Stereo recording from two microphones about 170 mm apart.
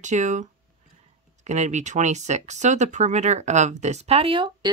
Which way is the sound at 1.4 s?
45° right (ahead or behind).